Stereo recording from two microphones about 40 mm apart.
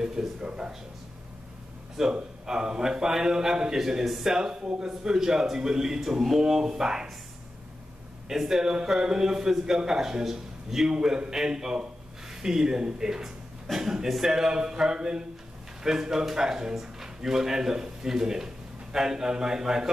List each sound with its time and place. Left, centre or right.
0.0 s speech: centre
2.0 s a man's voice: centre
2.4 s a man's voice: centre
8.3 s a man's voice: centre